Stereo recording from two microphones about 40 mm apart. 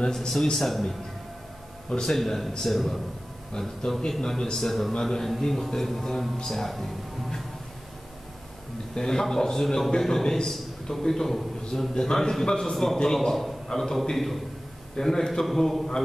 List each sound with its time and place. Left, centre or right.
0.2 s a man's voice: centre
1.9 s a man's voice: centre
2.1 s a man's voice: centre
8.9 s a man's voice: centre